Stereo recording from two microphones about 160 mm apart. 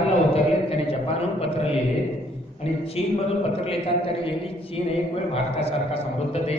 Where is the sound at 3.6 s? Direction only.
35° left (ahead or behind).